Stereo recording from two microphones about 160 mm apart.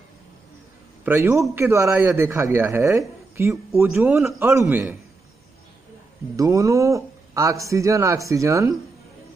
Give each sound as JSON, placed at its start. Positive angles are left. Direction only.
{"t": 1.0, "sound": "a man's voice", "side_deg": -15}
{"t": 6.3, "sound": "a man's voice", "side_deg": -20}